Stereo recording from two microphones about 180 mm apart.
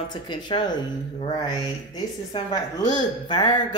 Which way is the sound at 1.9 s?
20° left (ahead or behind).